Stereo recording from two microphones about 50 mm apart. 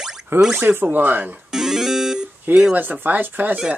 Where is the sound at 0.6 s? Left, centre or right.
Right.